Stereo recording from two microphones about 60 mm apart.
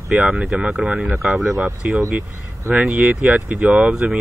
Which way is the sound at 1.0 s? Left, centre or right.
Centre.